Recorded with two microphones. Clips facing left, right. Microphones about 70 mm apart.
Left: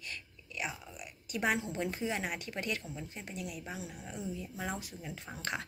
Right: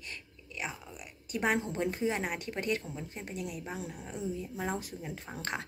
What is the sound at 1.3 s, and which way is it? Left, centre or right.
Speech, right.